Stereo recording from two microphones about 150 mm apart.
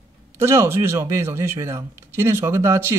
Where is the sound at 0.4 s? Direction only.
15° right (ahead or behind).